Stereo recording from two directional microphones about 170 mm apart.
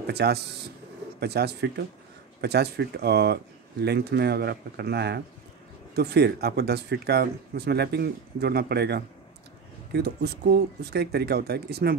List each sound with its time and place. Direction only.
0.0 s speech: 70° right (ahead or behind)